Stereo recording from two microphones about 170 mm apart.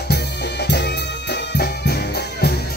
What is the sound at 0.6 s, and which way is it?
Music, 85° left.